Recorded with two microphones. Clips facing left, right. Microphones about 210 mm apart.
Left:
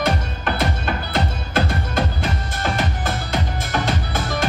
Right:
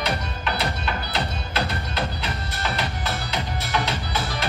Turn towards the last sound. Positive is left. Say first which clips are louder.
# left 4 dB
turn(degrees=50)  # may be behind; listen again after turning